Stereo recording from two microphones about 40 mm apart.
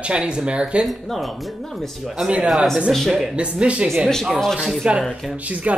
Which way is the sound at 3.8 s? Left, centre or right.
Centre.